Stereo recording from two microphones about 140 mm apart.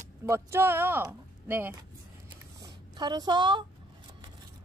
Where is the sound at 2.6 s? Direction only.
30° right (ahead or behind).